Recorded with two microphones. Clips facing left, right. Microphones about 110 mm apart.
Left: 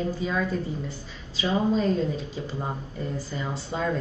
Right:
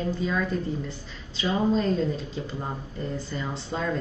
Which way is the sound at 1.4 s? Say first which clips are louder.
Even; 5° left (ahead or behind).